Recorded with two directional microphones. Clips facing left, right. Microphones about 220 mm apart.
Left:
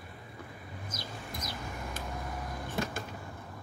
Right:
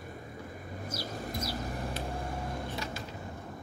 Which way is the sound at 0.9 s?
40° right (ahead or behind).